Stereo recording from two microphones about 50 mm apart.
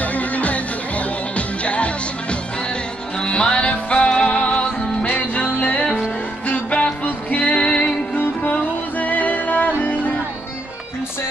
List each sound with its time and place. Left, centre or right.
0.0 s music: left